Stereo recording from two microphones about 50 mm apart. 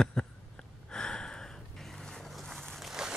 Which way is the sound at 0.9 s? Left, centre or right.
Centre.